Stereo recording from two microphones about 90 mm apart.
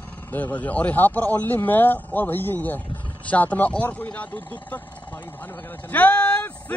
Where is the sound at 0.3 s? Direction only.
15° left (ahead or behind).